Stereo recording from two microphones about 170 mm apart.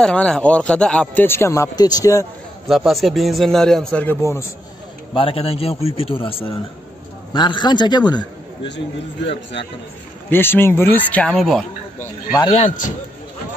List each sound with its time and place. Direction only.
0.0 s a man's voice: 5° left (ahead or behind); by 2.2 s 20° left (ahead or behind)
2.7 s a man's voice: centre (ahead or behind); by 4.5 s 15° left (ahead or behind)
5.1 s a man's voice: 35° left (ahead or behind)
8.6 s a man's voice: 90° left
10.3 s a man's voice: 15° left (ahead or behind)
12.4 s a man's voice: 35° left (ahead or behind)